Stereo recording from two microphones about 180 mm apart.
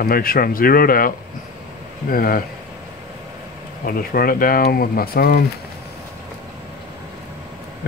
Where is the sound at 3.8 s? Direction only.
55° left (ahead or behind).